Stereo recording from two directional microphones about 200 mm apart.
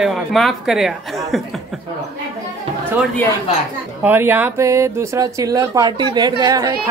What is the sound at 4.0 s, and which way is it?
A woman's voice, 10° right (ahead or behind).